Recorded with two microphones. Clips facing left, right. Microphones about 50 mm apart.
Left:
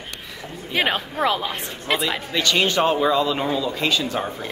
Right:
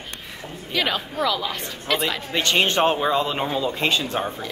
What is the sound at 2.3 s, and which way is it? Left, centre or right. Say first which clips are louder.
Speech: even; right.